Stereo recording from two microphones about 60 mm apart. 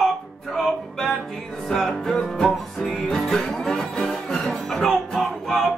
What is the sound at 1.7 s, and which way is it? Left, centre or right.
Music, centre.